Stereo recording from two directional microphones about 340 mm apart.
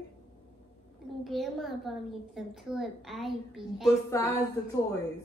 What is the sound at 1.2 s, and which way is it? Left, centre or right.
A woman's voice, centre.